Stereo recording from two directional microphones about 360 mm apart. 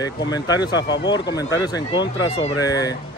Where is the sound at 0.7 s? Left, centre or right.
Left.